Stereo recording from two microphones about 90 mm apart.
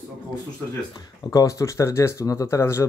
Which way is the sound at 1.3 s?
35° left (ahead or behind).